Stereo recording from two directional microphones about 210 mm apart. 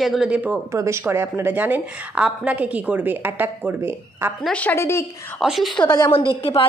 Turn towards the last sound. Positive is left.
turn(degrees=25)  # may be behind; listen again after turning